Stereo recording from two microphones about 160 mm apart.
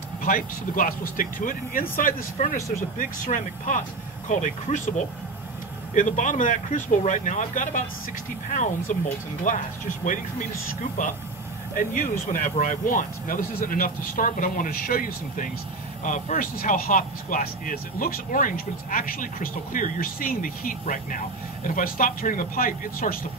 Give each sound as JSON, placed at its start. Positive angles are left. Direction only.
{"t": 0.2, "sound": "speech", "side_deg": 60}
{"t": 5.9, "sound": "speech", "side_deg": 50}
{"t": 11.7, "sound": "speech", "side_deg": 55}